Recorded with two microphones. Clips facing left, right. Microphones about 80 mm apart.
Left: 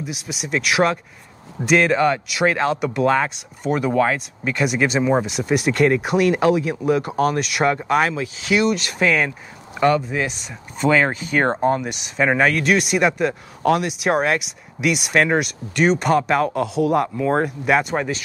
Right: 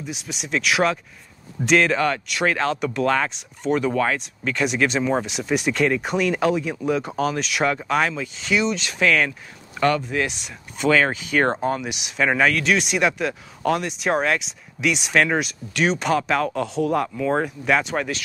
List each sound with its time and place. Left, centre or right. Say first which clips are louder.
0.0 s speech: left 3 dB; centre
10.0 s speech: left 1 dB; centre
10.9 s speech: left 1 dB; centre